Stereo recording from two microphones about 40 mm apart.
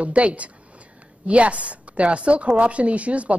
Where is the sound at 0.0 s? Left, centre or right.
Right.